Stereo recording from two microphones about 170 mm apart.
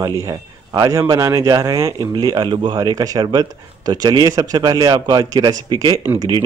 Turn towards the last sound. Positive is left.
turn(degrees=-20)  # may be behind; listen again after turning